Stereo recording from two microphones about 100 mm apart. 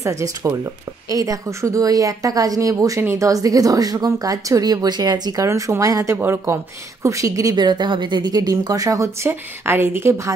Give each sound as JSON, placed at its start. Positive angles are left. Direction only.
{"t": 0.0, "sound": "speech", "side_deg": -30}
{"t": 7.6, "sound": "speech", "side_deg": -50}